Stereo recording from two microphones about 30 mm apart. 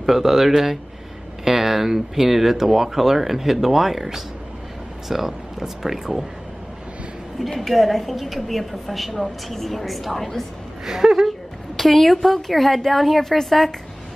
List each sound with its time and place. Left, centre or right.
0.0 s speech: centre
7.3 s a woman's voice: centre
10.9 s speech: centre
11.2 s a woman's voice: centre